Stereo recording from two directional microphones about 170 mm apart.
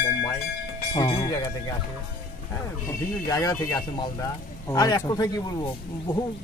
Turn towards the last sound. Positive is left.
turn(degrees=25)  # may be behind; listen again after turning